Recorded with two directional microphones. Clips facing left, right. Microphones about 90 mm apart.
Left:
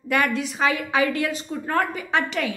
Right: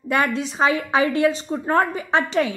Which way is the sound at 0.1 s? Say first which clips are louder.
Right 1 dB; 25° right (ahead or behind).